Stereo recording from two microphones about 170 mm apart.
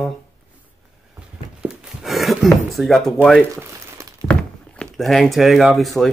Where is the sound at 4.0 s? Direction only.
15° right (ahead or behind).